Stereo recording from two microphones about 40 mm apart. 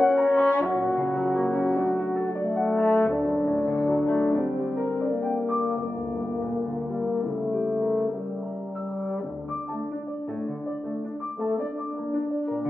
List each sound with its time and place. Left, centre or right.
0.0 s french horn: left
3.3 s music: left
5.2 s music: left
7.1 s french horn: centre
7.7 s music: centre